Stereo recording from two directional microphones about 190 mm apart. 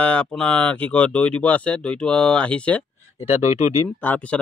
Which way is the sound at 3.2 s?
35° left (ahead or behind).